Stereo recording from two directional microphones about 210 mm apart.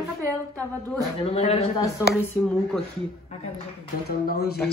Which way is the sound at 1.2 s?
30° left (ahead or behind).